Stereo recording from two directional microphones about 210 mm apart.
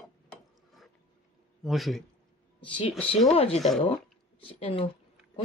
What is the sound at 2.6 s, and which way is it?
Speech, 25° left (ahead or behind).